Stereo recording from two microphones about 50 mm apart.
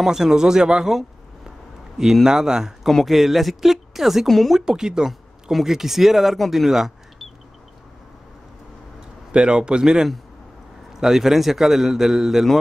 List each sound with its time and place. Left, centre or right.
0.0 s speech: centre
2.2 s speech: centre
2.9 s speech: centre
4.6 s speech: centre
9.3 s speech: centre